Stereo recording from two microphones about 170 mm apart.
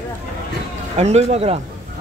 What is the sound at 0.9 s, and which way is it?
Speech, 40° right (ahead or behind).